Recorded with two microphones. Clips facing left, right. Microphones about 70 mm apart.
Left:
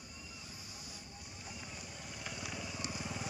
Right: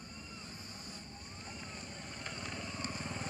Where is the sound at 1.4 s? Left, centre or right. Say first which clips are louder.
Right 1 dB; centre.